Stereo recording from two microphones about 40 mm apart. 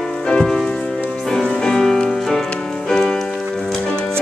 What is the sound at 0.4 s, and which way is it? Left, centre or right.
Music, centre.